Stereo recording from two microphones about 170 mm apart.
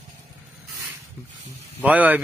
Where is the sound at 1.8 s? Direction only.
10° right (ahead or behind).